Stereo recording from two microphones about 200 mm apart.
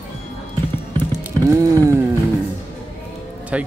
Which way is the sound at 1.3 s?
15° right (ahead or behind).